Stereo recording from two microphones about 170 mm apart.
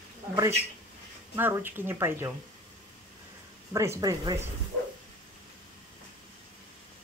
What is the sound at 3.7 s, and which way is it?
Speech, 20° right (ahead or behind).